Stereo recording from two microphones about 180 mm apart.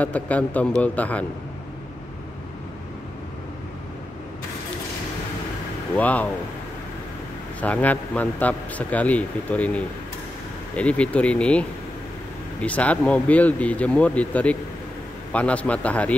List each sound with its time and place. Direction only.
0.0 s a man's voice: 10° left (ahead or behind)
5.9 s a man's voice: 10° left (ahead or behind)
7.6 s a man's voice: 10° left (ahead or behind)
12.6 s a man's voice: 10° left (ahead or behind)